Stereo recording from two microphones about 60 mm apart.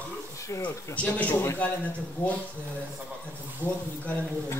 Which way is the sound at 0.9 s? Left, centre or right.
Left.